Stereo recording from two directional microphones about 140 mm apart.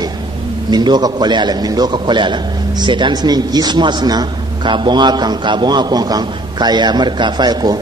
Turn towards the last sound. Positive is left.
turn(degrees=-30)  # may be behind; listen again after turning